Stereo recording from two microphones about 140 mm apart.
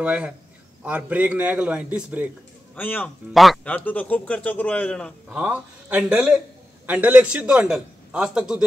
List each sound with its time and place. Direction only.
0.0 s a man's voice: 10° right (ahead or behind)
2.7 s a man's voice: 15° left (ahead or behind)
5.3 s a man's voice: 10° right (ahead or behind)